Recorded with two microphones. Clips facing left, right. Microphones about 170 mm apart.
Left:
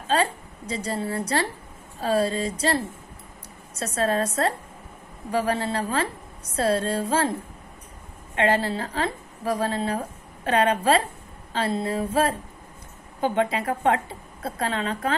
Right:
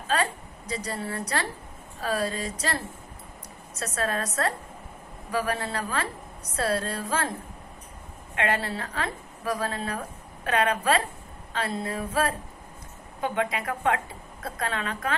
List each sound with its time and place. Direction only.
0.1 s a woman's voice: 30° left (ahead or behind)
8.4 s a woman's voice: 30° left (ahead or behind)